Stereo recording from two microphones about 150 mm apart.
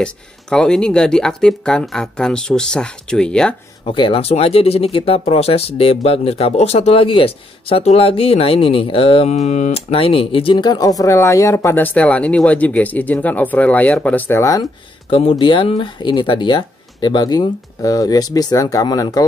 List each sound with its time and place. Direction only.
0.0 s speech: 5° left (ahead or behind)
3.8 s speech: 35° left (ahead or behind); by 14.6 s 20° left (ahead or behind)
14.6 s speech: 35° left (ahead or behind)